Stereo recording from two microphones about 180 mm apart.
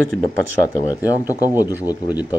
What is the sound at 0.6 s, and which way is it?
Speech, 15° left (ahead or behind).